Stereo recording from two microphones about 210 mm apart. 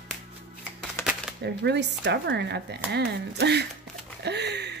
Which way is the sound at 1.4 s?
55° right (ahead or behind).